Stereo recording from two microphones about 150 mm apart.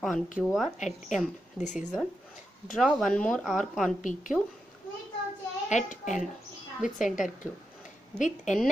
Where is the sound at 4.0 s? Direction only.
60° left (ahead or behind).